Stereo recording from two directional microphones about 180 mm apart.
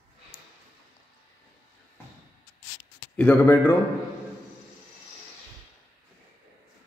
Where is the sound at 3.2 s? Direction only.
10° left (ahead or behind).